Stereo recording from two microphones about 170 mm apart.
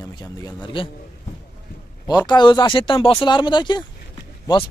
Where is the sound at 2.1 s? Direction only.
25° left (ahead or behind).